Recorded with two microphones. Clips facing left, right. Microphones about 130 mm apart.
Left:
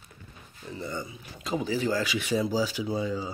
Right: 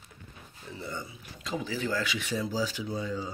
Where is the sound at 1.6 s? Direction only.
40° left (ahead or behind).